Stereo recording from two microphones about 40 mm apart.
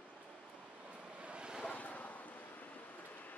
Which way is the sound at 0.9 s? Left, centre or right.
Right.